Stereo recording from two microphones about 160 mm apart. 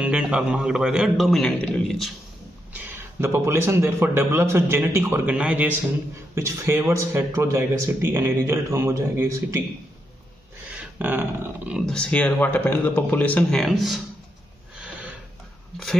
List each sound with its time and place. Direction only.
0.0 s a man's voice: 5° right (ahead or behind)
2.7 s speech: 10° right (ahead or behind)
10.8 s a sound: 10° right (ahead or behind)
11.8 s speech: 5° left (ahead or behind)